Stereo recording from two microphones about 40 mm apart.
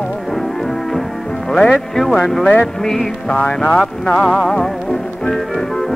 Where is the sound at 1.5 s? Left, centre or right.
Centre.